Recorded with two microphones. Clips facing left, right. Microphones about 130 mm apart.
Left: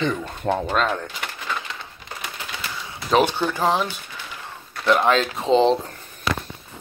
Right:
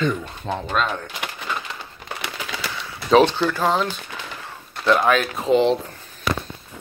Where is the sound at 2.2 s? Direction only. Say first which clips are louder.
Right 3 dB; 90° right.